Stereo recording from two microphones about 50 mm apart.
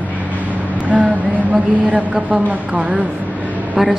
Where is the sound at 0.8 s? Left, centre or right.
Right.